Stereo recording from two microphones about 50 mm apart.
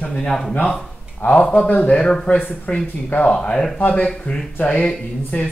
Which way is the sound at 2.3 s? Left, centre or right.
Left.